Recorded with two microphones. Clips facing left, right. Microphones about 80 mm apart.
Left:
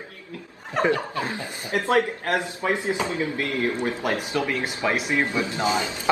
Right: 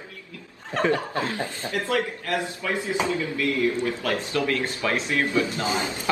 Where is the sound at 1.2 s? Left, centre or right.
Left.